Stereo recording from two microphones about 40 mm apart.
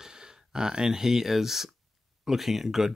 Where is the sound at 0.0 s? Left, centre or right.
Centre.